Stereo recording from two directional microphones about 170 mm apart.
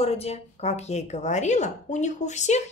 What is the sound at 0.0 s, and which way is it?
A woman's voice, 35° left (ahead or behind).